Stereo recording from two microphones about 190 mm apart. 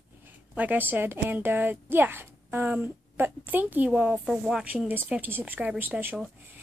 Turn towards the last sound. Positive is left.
turn(degrees=-10)  # may be behind; listen again after turning